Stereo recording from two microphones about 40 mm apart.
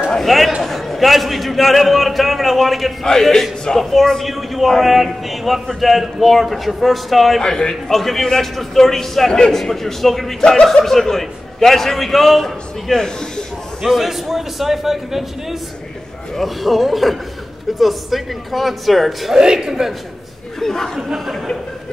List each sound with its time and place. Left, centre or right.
0.2 s a man's voice: centre
3.0 s a man's voice: centre
7.4 s a man's voice: centre
13.8 s a man's voice: centre
16.3 s a man's voice: centre
19.3 s a man's voice: centre
20.5 s speech: centre